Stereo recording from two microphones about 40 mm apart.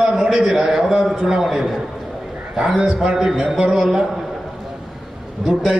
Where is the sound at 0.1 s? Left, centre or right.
Centre.